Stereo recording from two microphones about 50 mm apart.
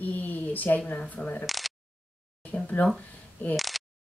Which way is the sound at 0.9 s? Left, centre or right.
Left.